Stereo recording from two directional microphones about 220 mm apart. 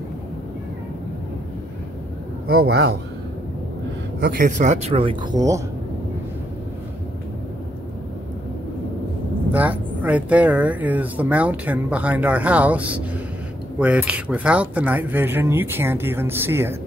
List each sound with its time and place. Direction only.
2.4 s a man's voice: 45° right (ahead or behind)
4.4 s speech: 35° right (ahead or behind); by 5.6 s 15° right (ahead or behind)
9.5 s speech: 5° right (ahead or behind)